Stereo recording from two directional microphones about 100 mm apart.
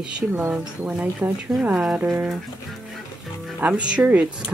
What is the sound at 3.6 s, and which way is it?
Speech, 10° right (ahead or behind).